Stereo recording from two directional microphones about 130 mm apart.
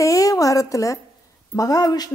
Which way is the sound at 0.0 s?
25° left (ahead or behind).